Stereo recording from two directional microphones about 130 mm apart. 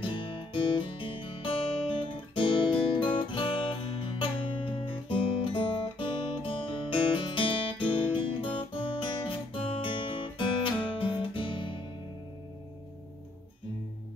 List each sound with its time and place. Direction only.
0.0 s guitar: 40° left (ahead or behind)
3.2 s music: 40° left (ahead or behind)
8.5 s guitar: 40° left (ahead or behind)